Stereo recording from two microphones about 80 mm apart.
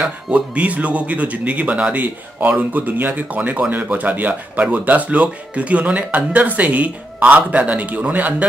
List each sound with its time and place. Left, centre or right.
0.0 s speech: centre